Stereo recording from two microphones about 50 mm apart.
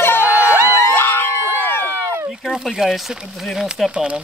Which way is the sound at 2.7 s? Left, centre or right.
Centre.